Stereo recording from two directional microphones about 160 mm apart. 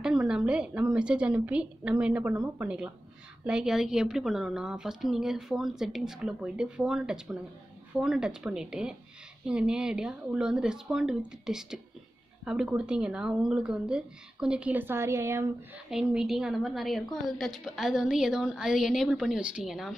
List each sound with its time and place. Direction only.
0.0 s a woman's voice: 5° right (ahead or behind)
2.3 s a woman's voice: 20° right (ahead or behind)
3.4 s a woman's voice: 5° right (ahead or behind)
15.9 s a woman's voice: 5° right (ahead or behind)